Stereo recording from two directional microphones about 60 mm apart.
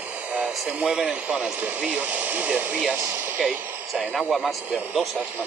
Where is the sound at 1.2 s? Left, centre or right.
Centre.